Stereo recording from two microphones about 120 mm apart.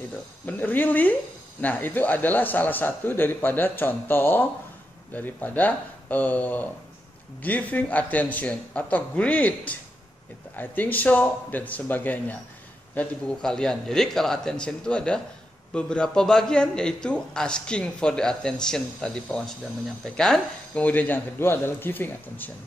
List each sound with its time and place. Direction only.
0.5 s a man's voice: 15° left (ahead or behind)